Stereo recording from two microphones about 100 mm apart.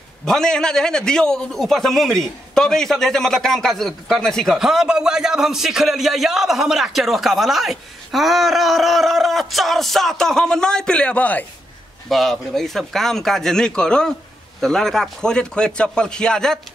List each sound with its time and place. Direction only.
0.2 s a man's voice: 5° left (ahead or behind)
12.1 s a man's voice: centre (ahead or behind)